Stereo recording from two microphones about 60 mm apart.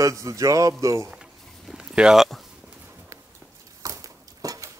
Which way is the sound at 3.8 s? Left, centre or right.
Right.